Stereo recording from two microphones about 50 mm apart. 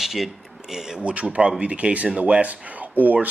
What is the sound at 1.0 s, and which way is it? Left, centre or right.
Speech, right.